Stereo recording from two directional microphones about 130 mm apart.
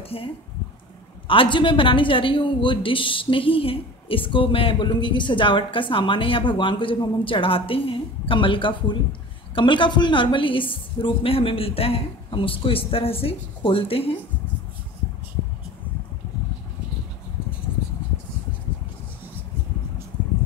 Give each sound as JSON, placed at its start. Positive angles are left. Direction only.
{"t": 0.0, "sound": "a woman's voice", "side_deg": 45}